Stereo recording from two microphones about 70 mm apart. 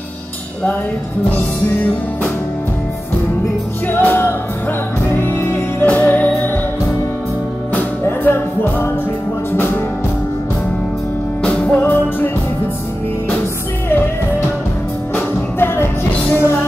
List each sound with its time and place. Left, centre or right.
3.8 s music: left
5.9 s music: left
8.0 s music: left
11.4 s music: centre
11.8 s music: left
15.1 s music: left